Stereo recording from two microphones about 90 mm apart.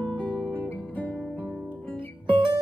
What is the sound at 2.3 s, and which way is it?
Music, 65° right (ahead or behind).